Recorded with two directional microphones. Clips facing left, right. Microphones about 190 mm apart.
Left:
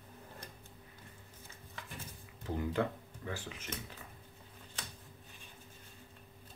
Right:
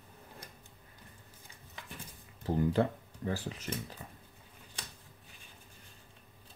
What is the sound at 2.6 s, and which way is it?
Speech, 35° right (ahead or behind).